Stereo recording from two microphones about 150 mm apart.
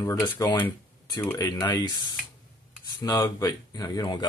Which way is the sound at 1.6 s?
30° left (ahead or behind).